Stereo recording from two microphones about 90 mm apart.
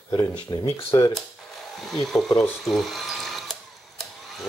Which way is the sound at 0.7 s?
30° left (ahead or behind).